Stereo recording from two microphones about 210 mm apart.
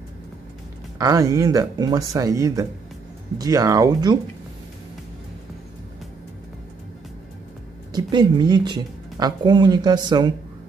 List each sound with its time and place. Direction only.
0.9 s speech: 15° right (ahead or behind)
7.9 s a woman's voice: 20° right (ahead or behind)